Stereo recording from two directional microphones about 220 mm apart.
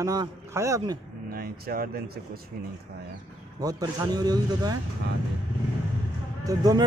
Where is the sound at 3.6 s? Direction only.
15° right (ahead or behind).